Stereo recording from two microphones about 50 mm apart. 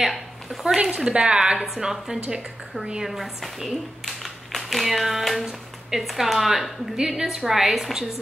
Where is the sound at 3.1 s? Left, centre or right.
Centre.